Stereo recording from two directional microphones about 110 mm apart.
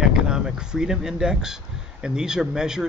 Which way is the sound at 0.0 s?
5° right (ahead or behind).